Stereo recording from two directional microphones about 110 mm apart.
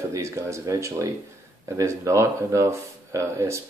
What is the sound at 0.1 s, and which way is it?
Speech, 25° right (ahead or behind).